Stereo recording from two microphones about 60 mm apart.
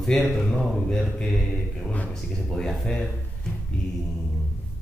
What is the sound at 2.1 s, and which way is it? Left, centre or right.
Speech, centre.